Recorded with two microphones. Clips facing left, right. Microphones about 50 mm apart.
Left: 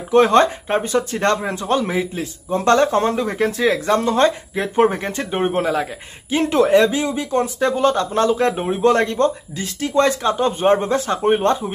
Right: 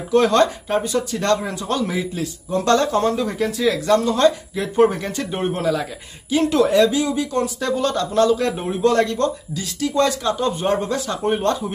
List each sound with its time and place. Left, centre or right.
0.1 s speech: left